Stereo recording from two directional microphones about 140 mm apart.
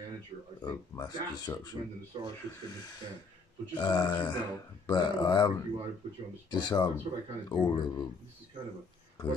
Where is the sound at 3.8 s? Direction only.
30° left (ahead or behind).